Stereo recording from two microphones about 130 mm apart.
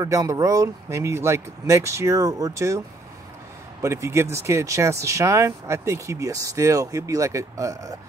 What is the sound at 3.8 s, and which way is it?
Speech, 20° right (ahead or behind).